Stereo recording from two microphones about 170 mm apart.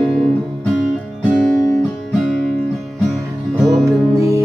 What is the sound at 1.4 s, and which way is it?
Music, centre (ahead or behind).